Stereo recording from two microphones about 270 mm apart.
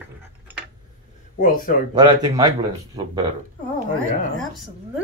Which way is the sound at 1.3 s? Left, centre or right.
Left.